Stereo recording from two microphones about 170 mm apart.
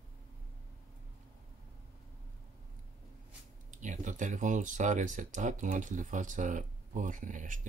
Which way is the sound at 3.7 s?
45° right (ahead or behind).